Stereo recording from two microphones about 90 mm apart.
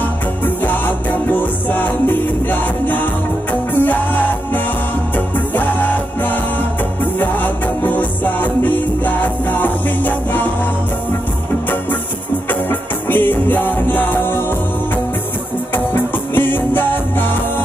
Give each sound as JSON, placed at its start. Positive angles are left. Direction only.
{"t": 0.7, "sound": "music", "side_deg": 20}
{"t": 12.6, "sound": "music", "side_deg": 20}
{"t": 15.7, "sound": "music", "side_deg": 25}